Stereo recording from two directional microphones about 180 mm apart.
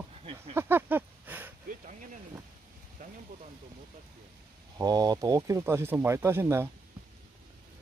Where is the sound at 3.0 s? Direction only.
50° right (ahead or behind).